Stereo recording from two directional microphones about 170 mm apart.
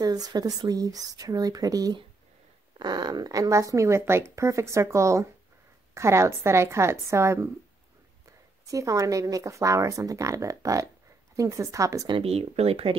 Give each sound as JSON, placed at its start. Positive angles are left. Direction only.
{"t": 0.0, "sound": "speech", "side_deg": -20}
{"t": 8.6, "sound": "speech", "side_deg": -20}
{"t": 12.2, "sound": "speech", "side_deg": -35}